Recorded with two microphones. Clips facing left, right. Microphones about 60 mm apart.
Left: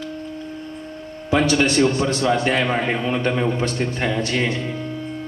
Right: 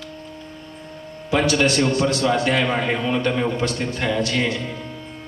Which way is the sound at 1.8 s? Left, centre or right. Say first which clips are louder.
Left 1 dB; left.